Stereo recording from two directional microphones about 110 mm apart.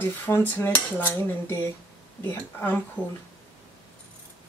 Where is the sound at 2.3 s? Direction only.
20° left (ahead or behind).